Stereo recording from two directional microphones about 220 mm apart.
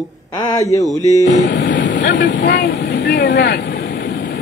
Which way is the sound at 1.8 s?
55° left (ahead or behind).